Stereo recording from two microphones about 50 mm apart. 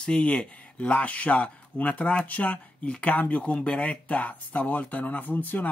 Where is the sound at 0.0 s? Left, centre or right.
Centre.